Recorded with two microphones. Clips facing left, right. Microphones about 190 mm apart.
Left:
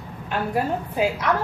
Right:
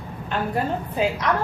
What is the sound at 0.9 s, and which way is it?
Speech, 5° left (ahead or behind).